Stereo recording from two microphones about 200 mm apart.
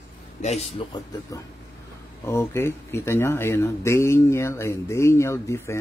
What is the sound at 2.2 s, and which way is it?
Speech, 15° left (ahead or behind).